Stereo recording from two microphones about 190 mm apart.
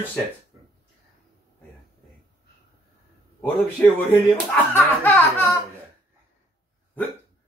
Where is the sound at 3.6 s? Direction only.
5° left (ahead or behind).